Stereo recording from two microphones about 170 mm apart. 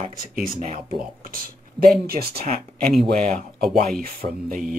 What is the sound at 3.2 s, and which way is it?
Speech, centre (ahead or behind).